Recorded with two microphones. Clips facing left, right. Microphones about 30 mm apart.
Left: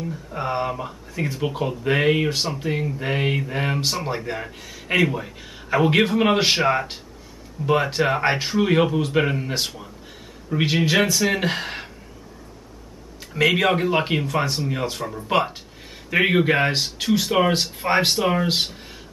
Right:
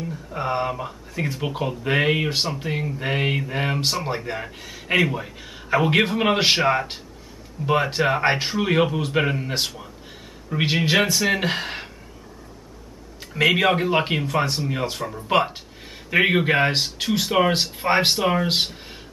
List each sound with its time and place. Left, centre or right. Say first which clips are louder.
0.0 s speech: even; centre
13.2 s speech: even; centre